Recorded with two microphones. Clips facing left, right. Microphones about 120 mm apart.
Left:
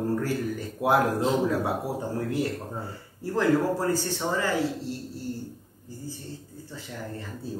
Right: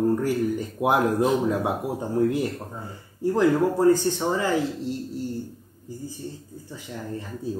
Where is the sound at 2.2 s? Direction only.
20° right (ahead or behind).